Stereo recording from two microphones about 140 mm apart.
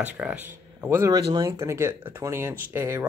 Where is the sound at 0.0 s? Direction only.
10° right (ahead or behind).